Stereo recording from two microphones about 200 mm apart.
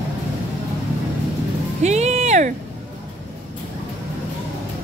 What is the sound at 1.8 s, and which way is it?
Music, 35° right (ahead or behind).